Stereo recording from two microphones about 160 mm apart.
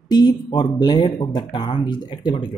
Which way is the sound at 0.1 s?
25° left (ahead or behind).